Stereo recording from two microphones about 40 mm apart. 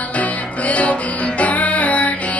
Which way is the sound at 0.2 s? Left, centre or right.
Left.